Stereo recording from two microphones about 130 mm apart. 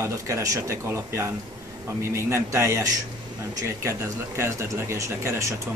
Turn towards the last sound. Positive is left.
turn(degrees=-20)  # may be behind; listen again after turning